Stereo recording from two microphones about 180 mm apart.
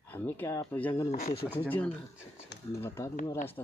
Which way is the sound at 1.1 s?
40° left (ahead or behind).